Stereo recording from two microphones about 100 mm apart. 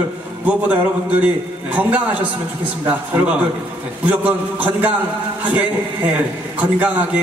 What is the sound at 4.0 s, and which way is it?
Speech, 15° right (ahead or behind).